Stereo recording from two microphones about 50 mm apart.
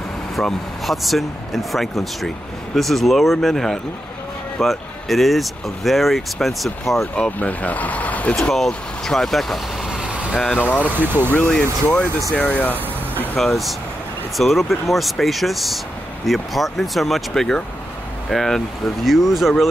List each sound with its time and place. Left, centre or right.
0.4 s speech: centre
7.2 s speech: left
8.4 s speech: centre
10.6 s speech: left
13.1 s vehicle: left
13.4 s speech: centre
17.3 s speech: centre
19.0 s speech: centre